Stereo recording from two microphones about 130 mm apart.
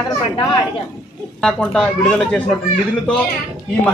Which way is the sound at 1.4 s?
5° left (ahead or behind).